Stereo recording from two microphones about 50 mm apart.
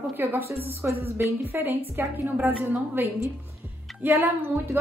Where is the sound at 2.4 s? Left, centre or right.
Right.